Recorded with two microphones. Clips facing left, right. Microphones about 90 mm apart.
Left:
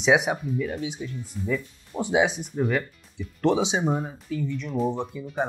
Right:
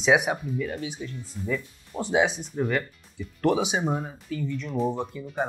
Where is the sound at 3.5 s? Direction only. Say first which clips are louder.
Left 1 dB; 20° left (ahead or behind).